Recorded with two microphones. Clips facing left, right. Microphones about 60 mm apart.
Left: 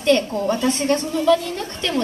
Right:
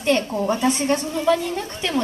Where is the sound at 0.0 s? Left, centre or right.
Centre.